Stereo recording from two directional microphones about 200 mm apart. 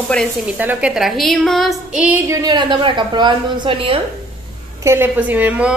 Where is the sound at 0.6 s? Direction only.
5° right (ahead or behind); by 3.9 s 25° right (ahead or behind).